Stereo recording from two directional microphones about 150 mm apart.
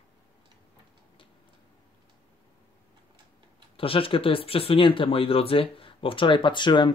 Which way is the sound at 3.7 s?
35° left (ahead or behind).